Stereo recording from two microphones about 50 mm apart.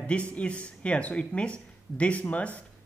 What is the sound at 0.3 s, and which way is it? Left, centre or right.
Speech, left.